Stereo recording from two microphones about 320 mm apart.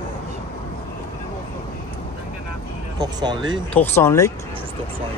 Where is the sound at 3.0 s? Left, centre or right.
Centre.